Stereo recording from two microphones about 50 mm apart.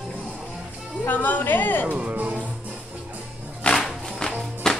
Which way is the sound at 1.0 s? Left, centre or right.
Left.